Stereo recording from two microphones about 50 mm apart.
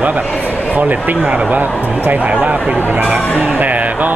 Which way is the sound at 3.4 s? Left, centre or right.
Right.